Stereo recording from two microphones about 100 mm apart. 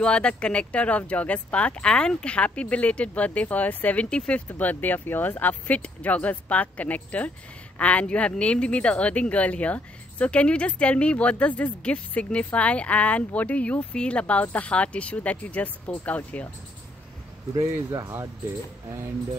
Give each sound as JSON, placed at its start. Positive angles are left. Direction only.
{"t": 0.0, "sound": "speech", "side_deg": 10}
{"t": 17.6, "sound": "speech", "side_deg": -30}